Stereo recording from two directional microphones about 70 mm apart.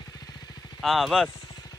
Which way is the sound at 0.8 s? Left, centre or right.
Centre.